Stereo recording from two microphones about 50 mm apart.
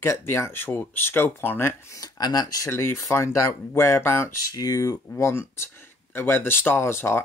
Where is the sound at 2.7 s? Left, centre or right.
Left.